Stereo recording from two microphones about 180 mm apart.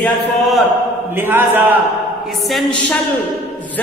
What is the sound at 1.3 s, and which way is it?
Speech, 10° right (ahead or behind).